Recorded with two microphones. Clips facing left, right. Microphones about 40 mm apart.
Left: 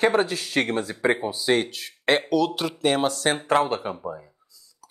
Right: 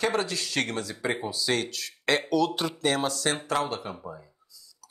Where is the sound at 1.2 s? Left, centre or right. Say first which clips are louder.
Left 5 dB; left.